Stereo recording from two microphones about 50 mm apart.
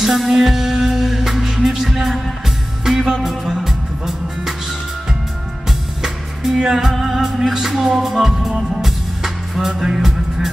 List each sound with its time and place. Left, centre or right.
0.0 s music: centre
5.7 s music: centre